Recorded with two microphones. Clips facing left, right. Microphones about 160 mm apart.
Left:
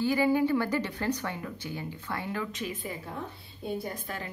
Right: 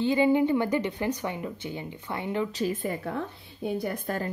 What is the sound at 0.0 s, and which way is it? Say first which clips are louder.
Speech: right 3 dB; 25° right (ahead or behind).